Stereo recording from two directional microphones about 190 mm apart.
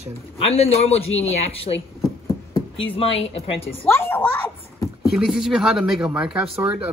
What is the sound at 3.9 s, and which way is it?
Speech, 10° left (ahead or behind).